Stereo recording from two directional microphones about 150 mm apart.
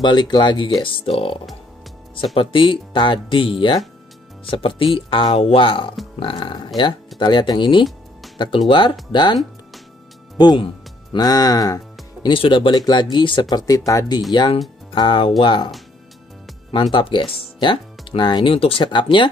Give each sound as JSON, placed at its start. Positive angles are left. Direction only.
{"t": 0.0, "sound": "speech", "side_deg": 30}
{"t": 16.7, "sound": "speech", "side_deg": 30}